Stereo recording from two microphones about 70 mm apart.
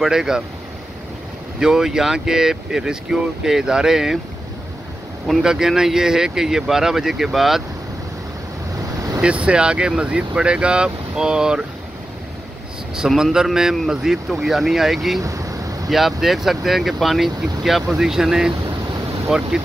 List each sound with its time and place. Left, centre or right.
0.0 s speech: centre
1.6 s speech: centre
5.2 s speech: centre
9.2 s speech: centre
12.9 s speech: centre
15.2 s a sound: right
15.9 s speech: centre